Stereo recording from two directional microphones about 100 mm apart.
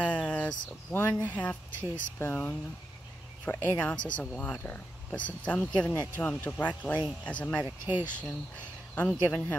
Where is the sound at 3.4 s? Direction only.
15° left (ahead or behind).